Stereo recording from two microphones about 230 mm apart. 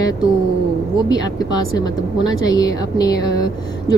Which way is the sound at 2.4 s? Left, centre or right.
Centre.